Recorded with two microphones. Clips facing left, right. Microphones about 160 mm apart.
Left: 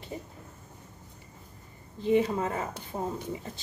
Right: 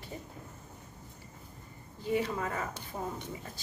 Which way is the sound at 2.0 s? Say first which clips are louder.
Left 6 dB; 25° left (ahead or behind).